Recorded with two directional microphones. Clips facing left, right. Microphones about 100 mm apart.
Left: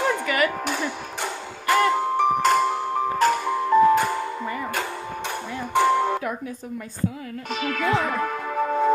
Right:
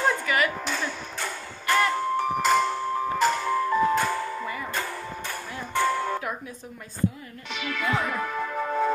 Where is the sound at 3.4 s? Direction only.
15° left (ahead or behind).